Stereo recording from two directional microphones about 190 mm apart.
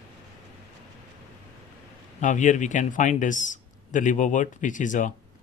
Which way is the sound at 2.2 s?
40° left (ahead or behind).